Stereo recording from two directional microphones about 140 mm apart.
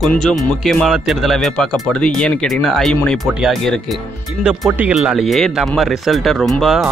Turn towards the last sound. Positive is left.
turn(degrees=0)  # may be behind; listen again after turning